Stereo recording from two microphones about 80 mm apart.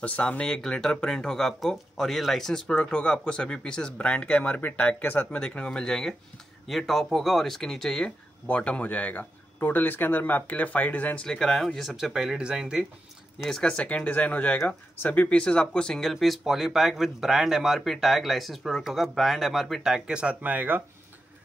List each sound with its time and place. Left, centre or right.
0.0 s speech: centre
11.2 s speech: centre
13.4 s speech: centre
19.9 s speech: centre